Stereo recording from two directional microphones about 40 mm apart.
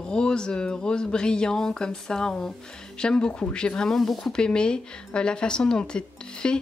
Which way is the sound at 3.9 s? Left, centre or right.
Centre.